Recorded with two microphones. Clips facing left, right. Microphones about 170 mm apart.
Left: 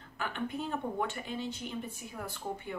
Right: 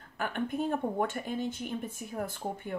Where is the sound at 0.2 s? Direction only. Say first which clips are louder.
Right 4 dB; 50° right (ahead or behind).